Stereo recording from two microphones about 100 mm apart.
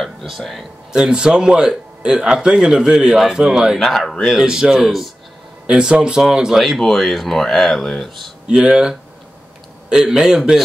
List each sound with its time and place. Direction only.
0.0 s speech: centre (ahead or behind)
8.5 s speech: 10° right (ahead or behind)